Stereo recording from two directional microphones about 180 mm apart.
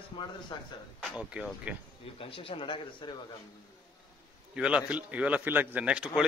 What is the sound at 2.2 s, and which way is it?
Speech, 30° left (ahead or behind).